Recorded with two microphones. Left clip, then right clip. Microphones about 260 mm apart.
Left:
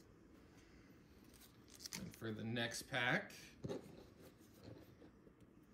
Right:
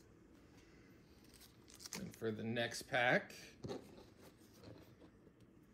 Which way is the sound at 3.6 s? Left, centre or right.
Right.